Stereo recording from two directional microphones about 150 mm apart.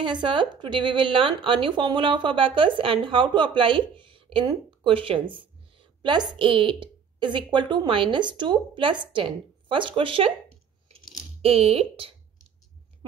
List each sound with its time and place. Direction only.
0.0 s a woman's voice: 30° right (ahead or behind)
11.4 s a woman's voice: 40° right (ahead or behind)